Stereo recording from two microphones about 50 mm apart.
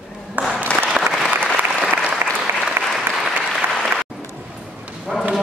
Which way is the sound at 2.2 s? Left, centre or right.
Right.